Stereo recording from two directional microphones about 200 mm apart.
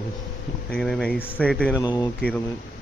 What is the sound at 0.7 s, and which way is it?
Speech, centre (ahead or behind).